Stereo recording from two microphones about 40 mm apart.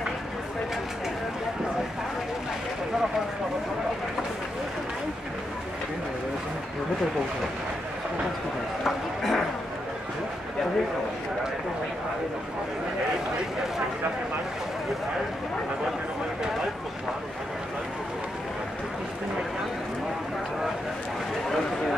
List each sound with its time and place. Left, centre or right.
8.8 s speech: centre